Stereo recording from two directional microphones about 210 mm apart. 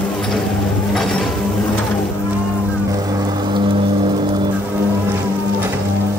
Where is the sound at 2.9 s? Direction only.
15° right (ahead or behind).